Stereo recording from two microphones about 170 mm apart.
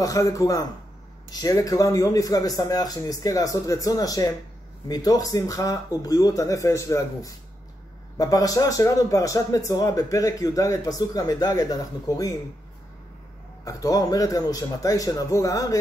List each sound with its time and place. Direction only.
0.0 s a man's voice: 20° left (ahead or behind)
13.7 s a man's voice: 20° left (ahead or behind)